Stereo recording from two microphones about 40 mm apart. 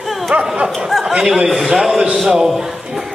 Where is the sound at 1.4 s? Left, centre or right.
Centre.